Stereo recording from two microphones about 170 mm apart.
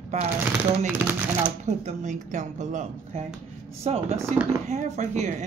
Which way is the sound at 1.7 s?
45° right (ahead or behind).